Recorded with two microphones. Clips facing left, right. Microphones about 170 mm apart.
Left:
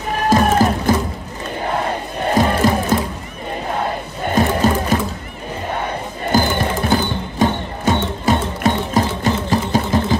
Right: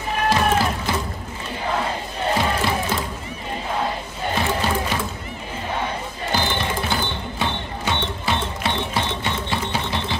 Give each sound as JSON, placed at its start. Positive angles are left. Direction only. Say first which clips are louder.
{"t": 0.3, "sound": "music", "louder": "left 6 dB", "side_deg": 45}
{"t": 2.3, "sound": "music", "louder": "left 8 dB", "side_deg": 45}
{"t": 4.4, "sound": "music", "louder": "left 8 dB", "side_deg": 45}
{"t": 6.3, "sound": "music", "louder": "left 7 dB", "side_deg": 45}